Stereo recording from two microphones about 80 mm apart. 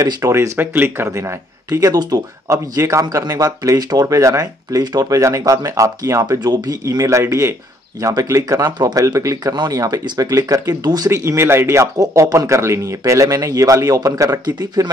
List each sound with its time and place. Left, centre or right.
0.0 s speech: right
1.7 s speech: right
3.7 s speech: right
11.1 s speech: right